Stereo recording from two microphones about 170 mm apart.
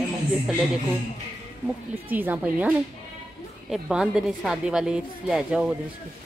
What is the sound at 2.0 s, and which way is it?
Speech, 10° right (ahead or behind).